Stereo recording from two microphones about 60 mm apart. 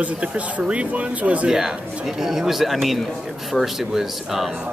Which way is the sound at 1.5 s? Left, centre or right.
Centre.